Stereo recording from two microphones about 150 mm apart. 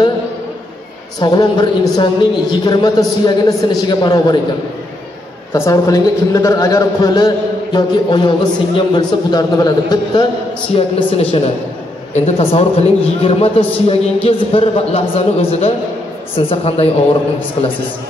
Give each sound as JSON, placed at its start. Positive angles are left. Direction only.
{"t": 1.2, "sound": "a man's voice", "side_deg": 30}
{"t": 5.5, "sound": "a man's voice", "side_deg": 20}
{"t": 11.0, "sound": "a woman's voice", "side_deg": 40}